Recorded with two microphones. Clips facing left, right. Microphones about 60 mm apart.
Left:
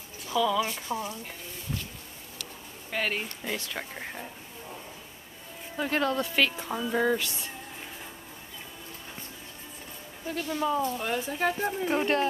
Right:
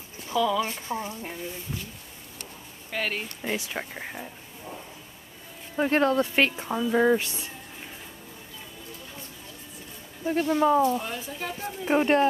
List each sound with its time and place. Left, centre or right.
0.3 s speech: centre
0.8 s speech: right
2.9 s speech: centre
3.4 s speech: centre
5.8 s speech: right
6.7 s speech: centre
7.0 s speech: centre
7.2 s speech: right
10.2 s speech: right
11.1 s speech: left
11.9 s speech: right